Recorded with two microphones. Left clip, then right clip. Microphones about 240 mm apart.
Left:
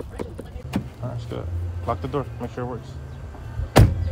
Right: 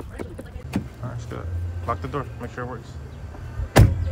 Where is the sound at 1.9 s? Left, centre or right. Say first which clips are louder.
Left 1 dB; centre.